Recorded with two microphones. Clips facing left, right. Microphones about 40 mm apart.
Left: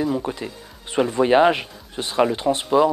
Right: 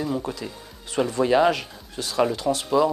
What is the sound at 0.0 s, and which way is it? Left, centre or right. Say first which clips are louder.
Speech: left 4 dB; left.